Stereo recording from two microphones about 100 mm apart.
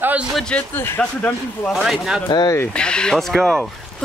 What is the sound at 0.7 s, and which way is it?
Speech, 20° left (ahead or behind).